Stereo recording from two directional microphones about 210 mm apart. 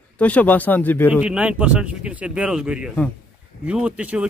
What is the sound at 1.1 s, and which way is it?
Speech, 5° right (ahead or behind).